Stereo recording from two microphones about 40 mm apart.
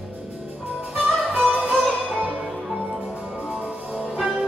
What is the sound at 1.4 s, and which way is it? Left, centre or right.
Music, right.